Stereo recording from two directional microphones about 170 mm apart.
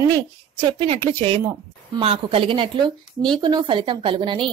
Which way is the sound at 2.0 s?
35° right (ahead or behind).